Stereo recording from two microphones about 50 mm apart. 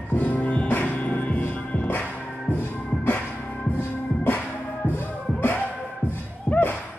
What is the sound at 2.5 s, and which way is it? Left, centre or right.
Music, left.